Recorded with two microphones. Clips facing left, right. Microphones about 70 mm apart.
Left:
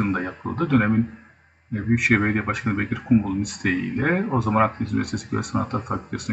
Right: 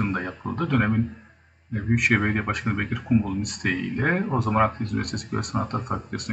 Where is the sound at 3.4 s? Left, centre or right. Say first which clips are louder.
Left 3 dB; centre.